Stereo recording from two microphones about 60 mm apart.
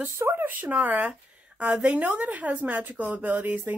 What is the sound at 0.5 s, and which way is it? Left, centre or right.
A woman's voice, right.